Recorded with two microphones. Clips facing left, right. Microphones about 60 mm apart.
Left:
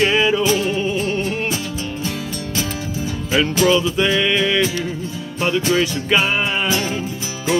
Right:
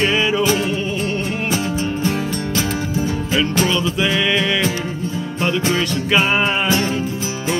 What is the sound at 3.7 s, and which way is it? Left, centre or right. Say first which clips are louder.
Music: left 3 dB; centre.